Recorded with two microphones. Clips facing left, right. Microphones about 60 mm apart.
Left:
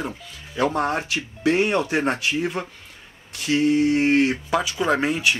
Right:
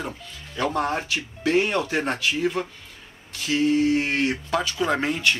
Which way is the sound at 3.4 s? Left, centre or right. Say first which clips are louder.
Left 2 dB; left.